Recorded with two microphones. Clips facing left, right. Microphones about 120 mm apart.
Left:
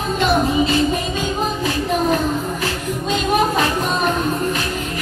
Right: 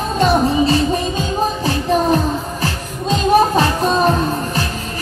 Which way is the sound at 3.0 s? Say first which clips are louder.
Right 5 dB; 35° right (ahead or behind).